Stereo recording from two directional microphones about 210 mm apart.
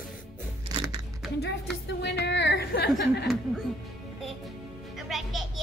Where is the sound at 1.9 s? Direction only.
55° left (ahead or behind).